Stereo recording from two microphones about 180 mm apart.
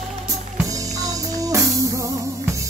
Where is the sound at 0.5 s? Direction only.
20° right (ahead or behind).